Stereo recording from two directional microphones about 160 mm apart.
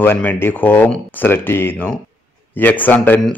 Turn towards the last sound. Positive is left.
turn(degrees=10)  # may be behind; listen again after turning